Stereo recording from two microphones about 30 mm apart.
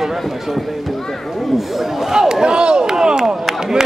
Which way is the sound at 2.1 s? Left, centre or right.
Right.